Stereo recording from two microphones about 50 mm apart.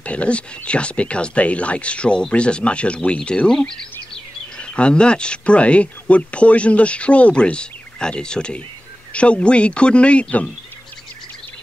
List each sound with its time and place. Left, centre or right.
0.0 s speech: left